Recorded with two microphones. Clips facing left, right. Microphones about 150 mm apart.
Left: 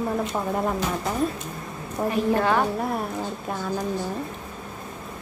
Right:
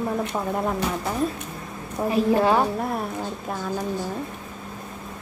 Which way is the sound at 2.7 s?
Centre (ahead or behind).